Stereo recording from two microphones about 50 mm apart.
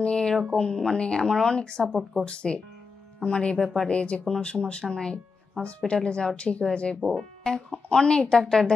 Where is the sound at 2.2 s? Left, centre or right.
Left.